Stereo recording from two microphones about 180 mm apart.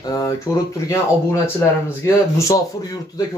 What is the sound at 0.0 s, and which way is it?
A man's voice, 20° left (ahead or behind).